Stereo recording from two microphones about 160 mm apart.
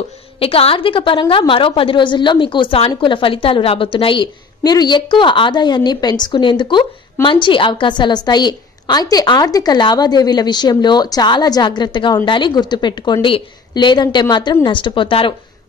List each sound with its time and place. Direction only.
0.4 s a woman's voice: 35° left (ahead or behind)